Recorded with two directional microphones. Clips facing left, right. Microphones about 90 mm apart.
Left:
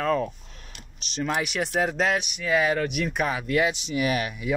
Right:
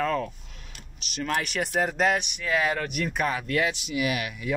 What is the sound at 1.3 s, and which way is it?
Speech, 5° left (ahead or behind).